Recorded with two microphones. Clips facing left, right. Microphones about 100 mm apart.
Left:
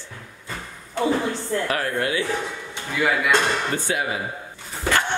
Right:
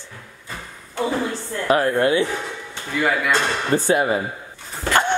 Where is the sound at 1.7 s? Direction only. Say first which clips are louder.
Right 12 dB; 30° right (ahead or behind).